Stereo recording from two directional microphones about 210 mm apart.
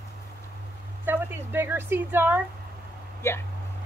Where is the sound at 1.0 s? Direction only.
10° right (ahead or behind).